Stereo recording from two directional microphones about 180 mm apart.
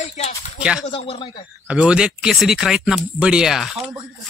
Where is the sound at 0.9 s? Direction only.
30° left (ahead or behind).